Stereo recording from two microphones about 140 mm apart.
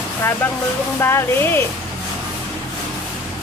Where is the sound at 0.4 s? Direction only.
10° left (ahead or behind).